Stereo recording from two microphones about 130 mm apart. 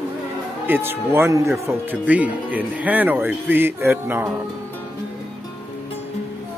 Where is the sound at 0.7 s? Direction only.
20° right (ahead or behind).